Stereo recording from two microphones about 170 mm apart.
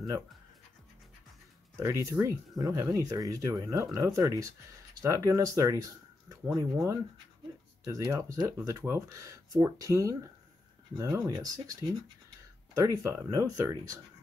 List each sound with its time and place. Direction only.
1.8 s speech: 15° right (ahead or behind)